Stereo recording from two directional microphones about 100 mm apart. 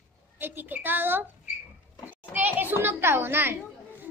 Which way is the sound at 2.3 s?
15° right (ahead or behind).